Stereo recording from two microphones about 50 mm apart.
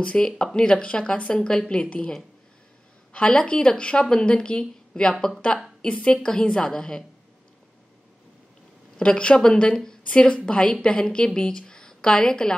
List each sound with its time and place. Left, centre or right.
0.0 s a woman's voice: centre
8.9 s a woman's voice: centre